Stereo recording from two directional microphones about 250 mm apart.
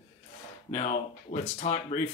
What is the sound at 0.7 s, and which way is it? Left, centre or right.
Speech, left.